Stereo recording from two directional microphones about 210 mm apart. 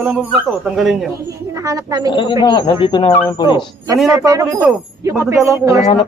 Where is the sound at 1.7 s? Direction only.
15° right (ahead or behind).